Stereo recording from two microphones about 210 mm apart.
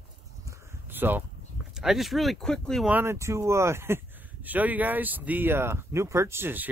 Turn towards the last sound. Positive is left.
turn(degrees=-10)  # may be behind; listen again after turning